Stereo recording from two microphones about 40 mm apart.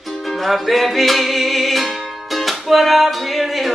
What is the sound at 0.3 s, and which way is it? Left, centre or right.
Music, centre.